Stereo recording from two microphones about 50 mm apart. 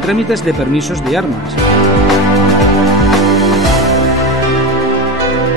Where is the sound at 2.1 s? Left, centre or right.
Centre.